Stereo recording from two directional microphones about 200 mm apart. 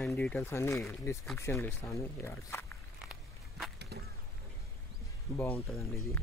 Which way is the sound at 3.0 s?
5° right (ahead or behind).